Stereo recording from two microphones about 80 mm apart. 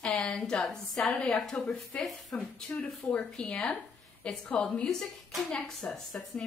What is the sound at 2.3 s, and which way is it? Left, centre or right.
A woman's voice, centre.